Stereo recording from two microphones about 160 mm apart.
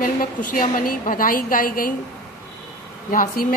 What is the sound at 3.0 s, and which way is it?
Speech, 60° left (ahead or behind).